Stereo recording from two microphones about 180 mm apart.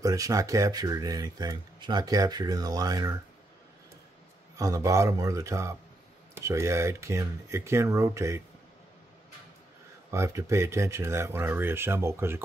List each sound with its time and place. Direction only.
0.0 s speech: 20° right (ahead or behind)
4.6 s speech: 20° right (ahead or behind)
10.1 s speech: 15° right (ahead or behind)